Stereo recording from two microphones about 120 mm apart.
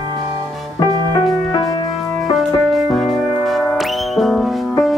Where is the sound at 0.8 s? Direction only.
30° left (ahead or behind).